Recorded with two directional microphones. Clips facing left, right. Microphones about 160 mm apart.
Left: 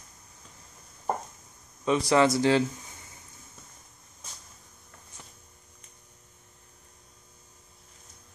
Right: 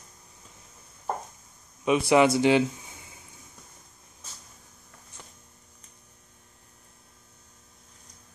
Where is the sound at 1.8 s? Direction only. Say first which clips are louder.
Right 2 dB; 15° right (ahead or behind).